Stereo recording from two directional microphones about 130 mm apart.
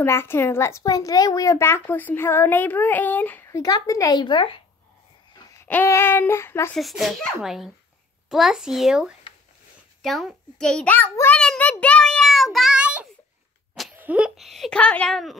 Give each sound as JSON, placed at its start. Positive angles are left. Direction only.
{"t": 0.0, "sound": "a child's voice", "side_deg": 20}
{"t": 5.6, "sound": "a child's voice", "side_deg": 15}
{"t": 6.7, "sound": "a child's voice", "side_deg": 0}
{"t": 11.8, "sound": "child singing", "side_deg": 5}
{"t": 13.9, "sound": "a child's voice", "side_deg": -10}